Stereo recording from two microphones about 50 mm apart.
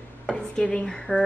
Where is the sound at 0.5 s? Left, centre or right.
Centre.